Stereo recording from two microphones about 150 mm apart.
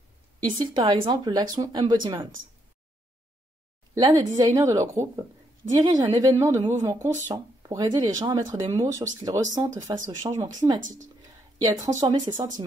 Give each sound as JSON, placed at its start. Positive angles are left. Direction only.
{"t": 0.6, "sound": "speech", "side_deg": -30}
{"t": 3.9, "sound": "a woman's voice", "side_deg": -20}